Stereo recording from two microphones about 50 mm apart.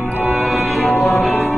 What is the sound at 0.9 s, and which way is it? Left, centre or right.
Music, left.